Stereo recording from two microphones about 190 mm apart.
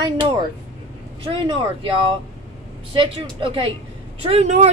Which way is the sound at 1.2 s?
30° right (ahead or behind).